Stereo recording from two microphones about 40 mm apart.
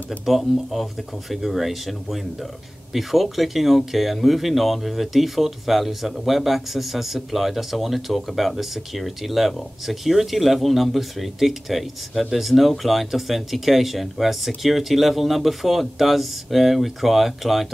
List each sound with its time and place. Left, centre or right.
0.2 s speech: centre